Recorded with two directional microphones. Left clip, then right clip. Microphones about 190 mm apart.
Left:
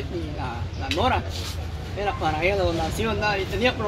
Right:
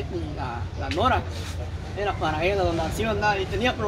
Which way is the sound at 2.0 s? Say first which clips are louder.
Left 1 dB; 5° left (ahead or behind).